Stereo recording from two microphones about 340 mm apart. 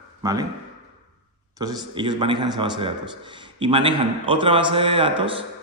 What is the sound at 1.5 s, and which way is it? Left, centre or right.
A man's voice, centre.